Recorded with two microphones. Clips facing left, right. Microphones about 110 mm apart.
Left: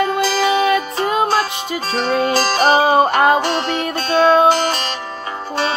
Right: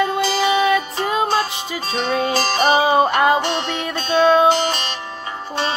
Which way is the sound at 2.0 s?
45° left (ahead or behind).